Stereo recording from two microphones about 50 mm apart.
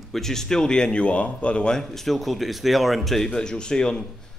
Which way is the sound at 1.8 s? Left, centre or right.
Centre.